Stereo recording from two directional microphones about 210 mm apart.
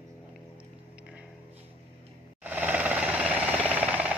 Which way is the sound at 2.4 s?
10° right (ahead or behind).